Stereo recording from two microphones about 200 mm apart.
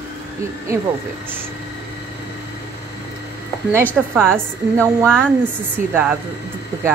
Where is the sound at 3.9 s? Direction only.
10° right (ahead or behind).